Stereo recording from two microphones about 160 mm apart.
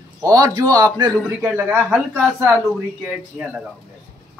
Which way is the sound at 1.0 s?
10° right (ahead or behind).